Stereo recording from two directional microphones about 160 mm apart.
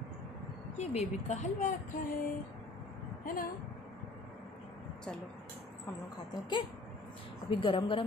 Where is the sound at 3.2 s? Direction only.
60° left (ahead or behind).